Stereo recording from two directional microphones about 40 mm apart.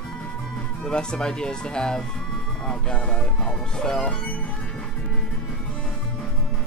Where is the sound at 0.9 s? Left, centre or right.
Centre.